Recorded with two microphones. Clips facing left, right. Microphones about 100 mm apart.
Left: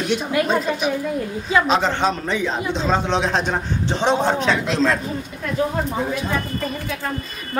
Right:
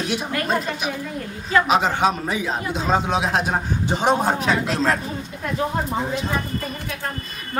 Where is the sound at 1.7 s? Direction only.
10° right (ahead or behind).